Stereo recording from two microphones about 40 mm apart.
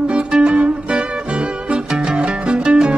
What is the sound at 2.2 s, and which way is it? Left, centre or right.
Music, right.